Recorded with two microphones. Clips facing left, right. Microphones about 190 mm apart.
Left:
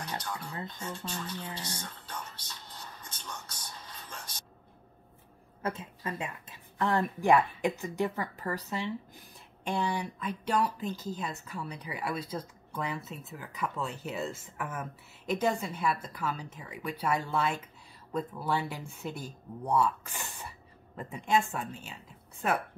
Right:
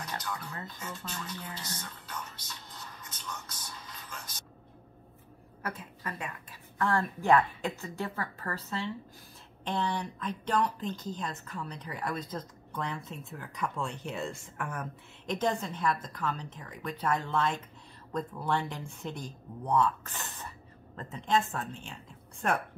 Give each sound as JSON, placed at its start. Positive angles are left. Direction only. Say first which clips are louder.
{"t": 0.1, "sound": "speech", "louder": "even", "side_deg": 30}
{"t": 5.6, "sound": "speech", "louder": "left 4 dB", "side_deg": 25}